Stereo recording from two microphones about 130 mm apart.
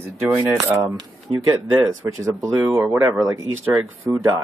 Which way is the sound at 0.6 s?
20° right (ahead or behind).